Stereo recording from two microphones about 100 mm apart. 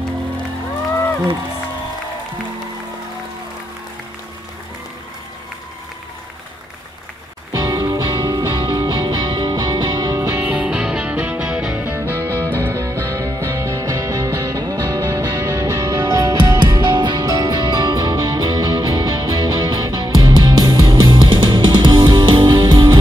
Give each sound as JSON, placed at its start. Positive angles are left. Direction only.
{"t": 7.6, "sound": "music", "side_deg": -40}
{"t": 10.1, "sound": "music", "side_deg": -30}
{"t": 10.5, "sound": "music", "side_deg": -10}
{"t": 12.0, "sound": "music", "side_deg": -30}
{"t": 12.3, "sound": "music", "side_deg": 20}
{"t": 12.5, "sound": "music", "side_deg": -30}